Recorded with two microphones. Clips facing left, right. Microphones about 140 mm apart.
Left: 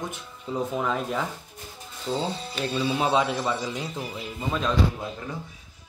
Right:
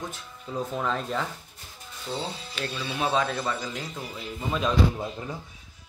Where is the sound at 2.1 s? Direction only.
25° left (ahead or behind).